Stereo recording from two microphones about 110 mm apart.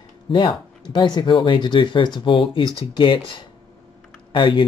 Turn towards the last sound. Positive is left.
turn(degrees=45)  # may be behind; listen again after turning